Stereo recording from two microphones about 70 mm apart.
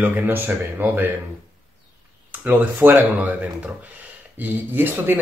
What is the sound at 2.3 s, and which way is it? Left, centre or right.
Speech, right.